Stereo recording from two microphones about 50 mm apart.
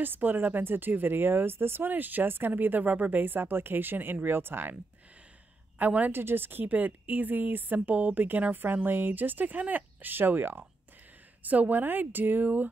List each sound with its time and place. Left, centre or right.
0.0 s speech: right
5.8 s speech: right
6.1 s speech: right
11.4 s speech: right